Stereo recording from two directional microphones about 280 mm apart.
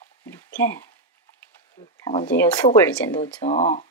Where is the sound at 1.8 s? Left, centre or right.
Centre.